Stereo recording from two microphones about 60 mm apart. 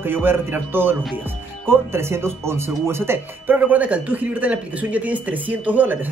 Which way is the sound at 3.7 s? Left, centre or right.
Right.